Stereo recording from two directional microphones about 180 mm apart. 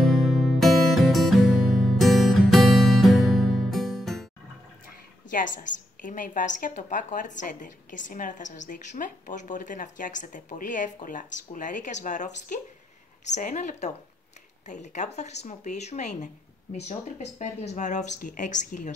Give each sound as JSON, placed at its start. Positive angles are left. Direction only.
{"t": 0.0, "sound": "music", "side_deg": 0}
{"t": 5.3, "sound": "a woman's voice", "side_deg": 45}
{"t": 13.3, "sound": "a woman's voice", "side_deg": 45}